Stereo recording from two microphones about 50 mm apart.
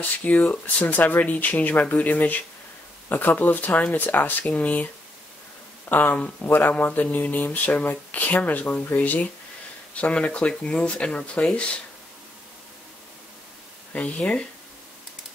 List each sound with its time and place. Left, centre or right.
0.2 s speech: left
4.5 s speech: left
5.9 s speech: left
13.9 s speech: left